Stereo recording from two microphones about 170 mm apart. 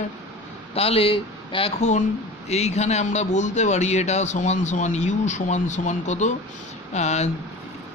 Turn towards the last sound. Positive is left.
turn(degrees=40)  # may be behind; listen again after turning